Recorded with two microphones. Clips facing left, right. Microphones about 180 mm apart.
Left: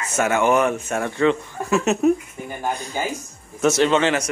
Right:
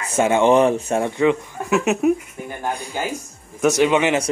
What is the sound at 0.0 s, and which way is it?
Speech, 30° right (ahead or behind).